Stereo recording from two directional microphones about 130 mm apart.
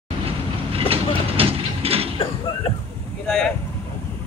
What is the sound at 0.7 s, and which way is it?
Vehicle, 45° right (ahead or behind).